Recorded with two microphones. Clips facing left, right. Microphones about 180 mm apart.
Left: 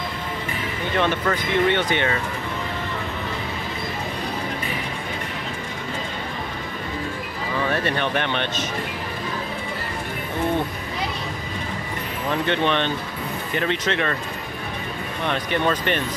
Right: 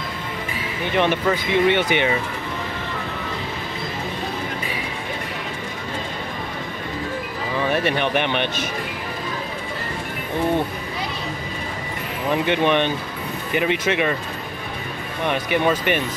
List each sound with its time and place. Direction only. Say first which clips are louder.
0.9 s speech: right 3 dB; 10° right (ahead or behind)
7.7 s speech: right 4 dB; 15° right (ahead or behind)
12.3 s speech: right 3 dB; 15° right (ahead or behind)
15.2 s speech: right 3 dB; 10° right (ahead or behind)